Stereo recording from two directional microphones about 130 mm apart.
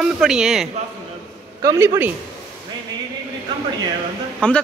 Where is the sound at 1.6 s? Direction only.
25° right (ahead or behind).